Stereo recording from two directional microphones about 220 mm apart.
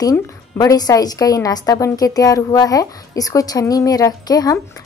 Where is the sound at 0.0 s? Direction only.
15° left (ahead or behind).